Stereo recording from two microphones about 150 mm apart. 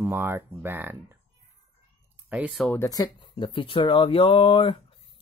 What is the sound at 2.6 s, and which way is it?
Speech, 15° left (ahead or behind).